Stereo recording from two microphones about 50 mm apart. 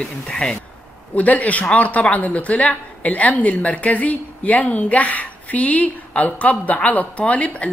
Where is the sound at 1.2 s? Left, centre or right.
Left.